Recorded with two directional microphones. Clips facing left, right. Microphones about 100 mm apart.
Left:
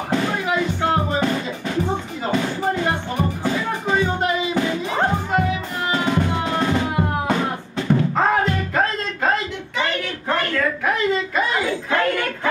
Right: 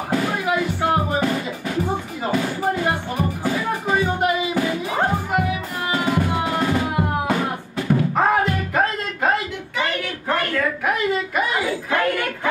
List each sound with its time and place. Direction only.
0.5 s music: 15° right (ahead or behind)
6.2 s drum: 15° right (ahead or behind)
8.2 s music: 15° right (ahead or behind)
10.5 s a sound: 20° right (ahead or behind)